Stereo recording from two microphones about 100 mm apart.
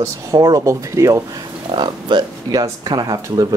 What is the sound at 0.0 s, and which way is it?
A man's voice, 35° right (ahead or behind).